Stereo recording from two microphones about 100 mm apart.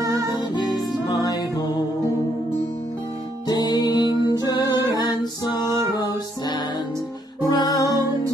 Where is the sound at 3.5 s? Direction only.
45° left (ahead or behind).